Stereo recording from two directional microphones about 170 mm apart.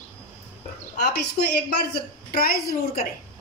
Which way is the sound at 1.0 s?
70° left (ahead or behind).